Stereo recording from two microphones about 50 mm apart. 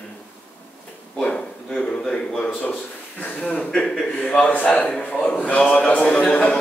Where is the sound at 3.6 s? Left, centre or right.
Centre.